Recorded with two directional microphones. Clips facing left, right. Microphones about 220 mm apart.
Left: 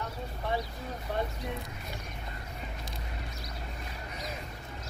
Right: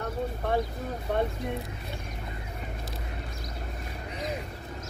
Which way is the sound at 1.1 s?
55° right (ahead or behind).